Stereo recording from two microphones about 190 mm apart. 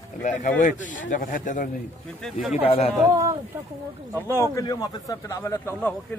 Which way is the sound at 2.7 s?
30° left (ahead or behind).